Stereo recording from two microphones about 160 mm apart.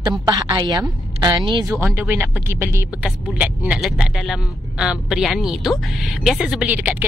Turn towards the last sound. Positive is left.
turn(degrees=-10)  # may be behind; listen again after turning